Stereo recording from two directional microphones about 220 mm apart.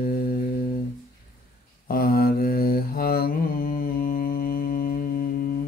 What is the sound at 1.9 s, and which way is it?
Mantra, 45° left (ahead or behind).